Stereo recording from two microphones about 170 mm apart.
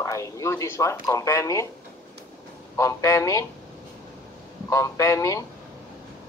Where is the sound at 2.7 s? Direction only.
20° left (ahead or behind).